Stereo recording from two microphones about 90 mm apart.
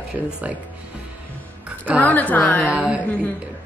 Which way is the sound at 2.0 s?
20° left (ahead or behind).